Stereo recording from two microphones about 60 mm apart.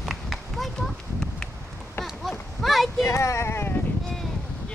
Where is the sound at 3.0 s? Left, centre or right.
Left.